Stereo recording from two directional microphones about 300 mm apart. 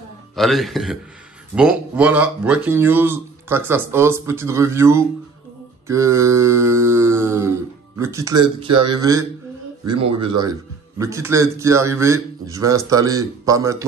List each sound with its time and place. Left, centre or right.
0.4 s a man's voice: centre